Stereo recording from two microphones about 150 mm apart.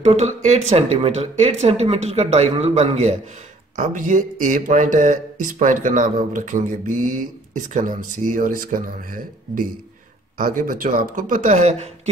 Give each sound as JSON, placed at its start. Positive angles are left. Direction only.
{"t": 0.0, "sound": "speech", "side_deg": -50}
{"t": 3.7, "sound": "speech", "side_deg": -60}